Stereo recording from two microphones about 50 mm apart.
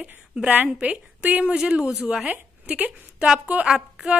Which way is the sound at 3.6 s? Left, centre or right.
Centre.